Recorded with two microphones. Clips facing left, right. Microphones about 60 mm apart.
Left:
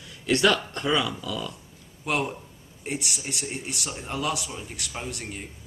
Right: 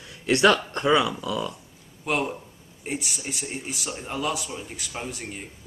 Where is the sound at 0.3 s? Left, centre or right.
Right.